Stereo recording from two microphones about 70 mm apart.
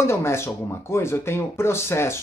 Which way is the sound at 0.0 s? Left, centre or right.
Left.